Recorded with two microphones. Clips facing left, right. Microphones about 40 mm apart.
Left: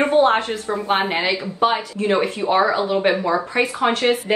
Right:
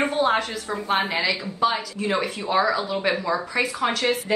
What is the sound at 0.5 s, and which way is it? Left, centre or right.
Speech, left.